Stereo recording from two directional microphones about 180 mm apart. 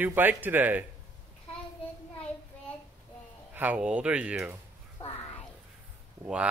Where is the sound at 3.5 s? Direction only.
10° right (ahead or behind).